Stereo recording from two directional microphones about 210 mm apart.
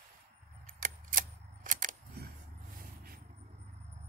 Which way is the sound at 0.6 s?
40° right (ahead or behind).